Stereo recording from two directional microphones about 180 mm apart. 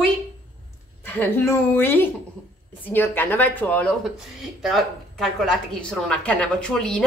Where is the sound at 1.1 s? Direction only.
10° left (ahead or behind).